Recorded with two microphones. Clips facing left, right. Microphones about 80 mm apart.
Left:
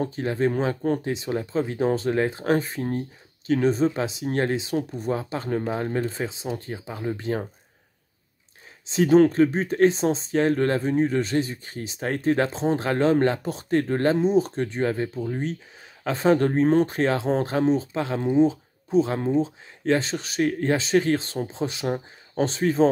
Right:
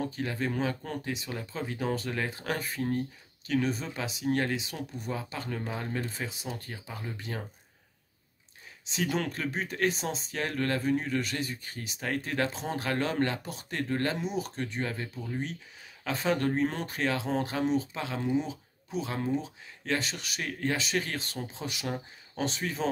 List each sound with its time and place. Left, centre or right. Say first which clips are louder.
0.0 s speech: left 8 dB; left
8.9 s speech: left 15 dB; left